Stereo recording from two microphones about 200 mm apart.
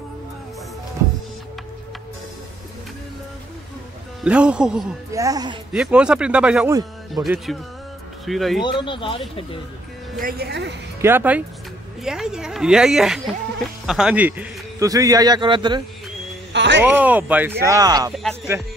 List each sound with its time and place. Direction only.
4.2 s a woman's voice: 5° right (ahead or behind)
5.1 s a man's voice: 15° right (ahead or behind)
5.7 s a woman's voice: 5° right (ahead or behind)
6.7 s a man's voice: 20° right (ahead or behind)
7.2 s a woman's voice: centre (ahead or behind)
8.6 s speech: 25° left (ahead or behind)
10.2 s speech: 55° right (ahead or behind)
11.0 s a man's voice: 10° right (ahead or behind)
16.5 s a sound: 65° right (ahead or behind)
16.8 s a man's voice: 10° right (ahead or behind)